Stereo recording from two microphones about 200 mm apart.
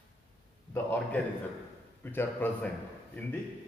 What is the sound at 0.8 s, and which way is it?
Speech, 5° left (ahead or behind).